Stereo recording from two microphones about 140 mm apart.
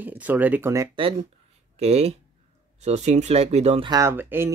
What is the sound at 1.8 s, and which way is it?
Speech, 50° right (ahead or behind).